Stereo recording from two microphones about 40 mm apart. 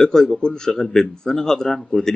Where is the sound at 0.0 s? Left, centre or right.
Centre.